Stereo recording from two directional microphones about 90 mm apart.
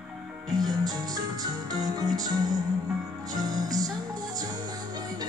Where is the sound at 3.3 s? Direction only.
45° right (ahead or behind).